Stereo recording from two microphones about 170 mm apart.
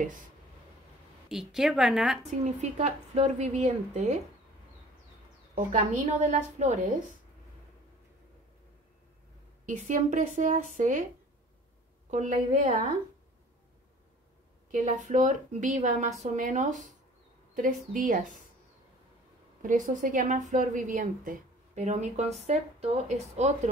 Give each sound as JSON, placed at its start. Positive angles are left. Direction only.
{"t": 1.3, "sound": "speech", "side_deg": 0}
{"t": 2.3, "sound": "a woman's voice", "side_deg": -45}
{"t": 5.5, "sound": "a woman's voice", "side_deg": -50}
{"t": 9.7, "sound": "a woman's voice", "side_deg": -50}
{"t": 12.1, "sound": "a woman's voice", "side_deg": -45}
{"t": 14.7, "sound": "a woman's voice", "side_deg": -50}
{"t": 19.6, "sound": "a woman's voice", "side_deg": -50}